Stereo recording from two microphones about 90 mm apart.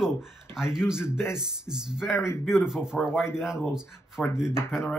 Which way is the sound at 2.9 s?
5° left (ahead or behind).